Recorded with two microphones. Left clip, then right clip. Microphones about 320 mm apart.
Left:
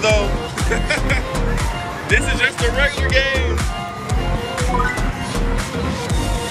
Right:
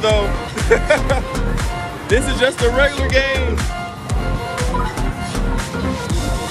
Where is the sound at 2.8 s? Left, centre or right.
Centre.